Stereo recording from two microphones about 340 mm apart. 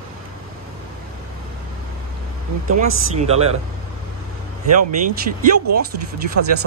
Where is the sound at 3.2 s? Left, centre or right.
Centre.